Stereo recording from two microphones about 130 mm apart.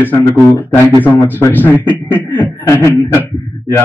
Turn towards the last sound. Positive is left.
turn(degrees=15)  # may be behind; listen again after turning